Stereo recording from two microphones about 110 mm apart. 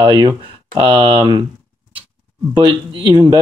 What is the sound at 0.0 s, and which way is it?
Speech, 40° right (ahead or behind).